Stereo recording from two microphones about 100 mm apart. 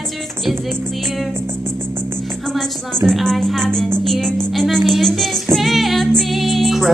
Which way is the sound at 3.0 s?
5° left (ahead or behind).